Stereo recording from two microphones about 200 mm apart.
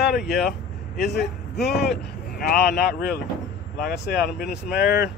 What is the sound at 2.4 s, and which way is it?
Speech, 50° left (ahead or behind).